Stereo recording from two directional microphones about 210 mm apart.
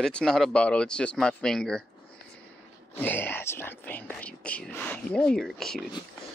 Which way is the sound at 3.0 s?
10° left (ahead or behind).